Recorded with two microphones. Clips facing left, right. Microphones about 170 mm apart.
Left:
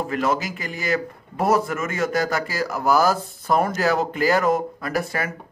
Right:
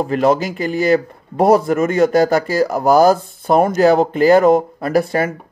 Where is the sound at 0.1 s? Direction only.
30° right (ahead or behind).